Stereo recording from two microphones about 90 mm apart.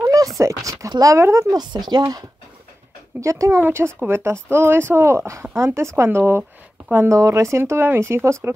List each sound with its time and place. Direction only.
0.0 s a sound: 40° right (ahead or behind)
1.5 s speech: 50° right (ahead or behind)
3.2 s speech: 35° right (ahead or behind)